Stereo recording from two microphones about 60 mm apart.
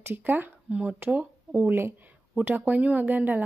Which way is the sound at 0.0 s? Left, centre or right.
Right.